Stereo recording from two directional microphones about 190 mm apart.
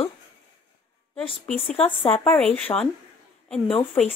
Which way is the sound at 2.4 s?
5° left (ahead or behind).